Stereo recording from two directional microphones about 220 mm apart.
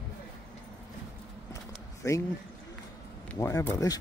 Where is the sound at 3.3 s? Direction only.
15° left (ahead or behind).